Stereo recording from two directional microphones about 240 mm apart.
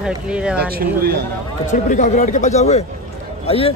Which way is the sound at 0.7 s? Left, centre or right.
Right.